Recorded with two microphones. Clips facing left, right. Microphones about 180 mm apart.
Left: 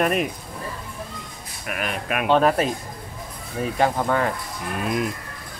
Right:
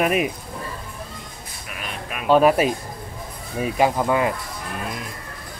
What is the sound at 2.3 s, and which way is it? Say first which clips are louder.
Speech: right 3 dB; 10° right (ahead or behind).